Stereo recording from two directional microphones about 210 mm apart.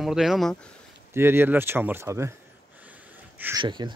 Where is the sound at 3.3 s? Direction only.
10° right (ahead or behind).